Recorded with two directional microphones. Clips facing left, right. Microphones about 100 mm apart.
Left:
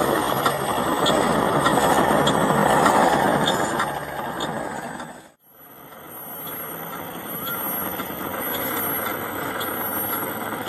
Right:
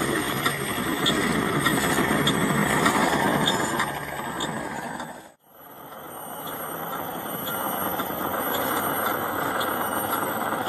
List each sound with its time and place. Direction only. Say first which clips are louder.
0.0 s a sound: left 5 dB; 40° left (ahead or behind)
2.0 s vehicle: left 5 dB; 25° left (ahead or behind)
2.9 s vehicle: left 5 dB; 35° left (ahead or behind)
3.5 s a sound: left 3 dB; 20° left (ahead or behind)
7.8 s alarm clock: right 2 dB; 15° right (ahead or behind)
8.5 s vehicle: right 2 dB; 20° right (ahead or behind)